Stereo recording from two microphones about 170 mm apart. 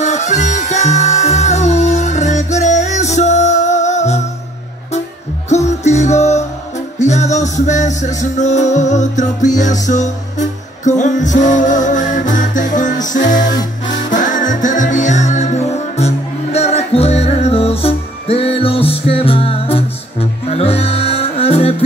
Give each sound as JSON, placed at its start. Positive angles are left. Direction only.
{"t": 0.0, "sound": "music", "side_deg": 45}
{"t": 5.5, "sound": "music", "side_deg": 40}
{"t": 13.4, "sound": "music", "side_deg": 25}
{"t": 13.8, "sound": "music", "side_deg": 50}